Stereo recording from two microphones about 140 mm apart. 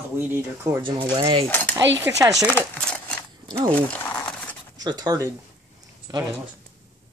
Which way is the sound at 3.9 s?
10° left (ahead or behind).